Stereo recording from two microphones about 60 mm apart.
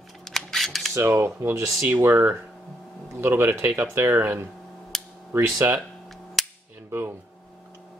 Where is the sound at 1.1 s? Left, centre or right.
Right.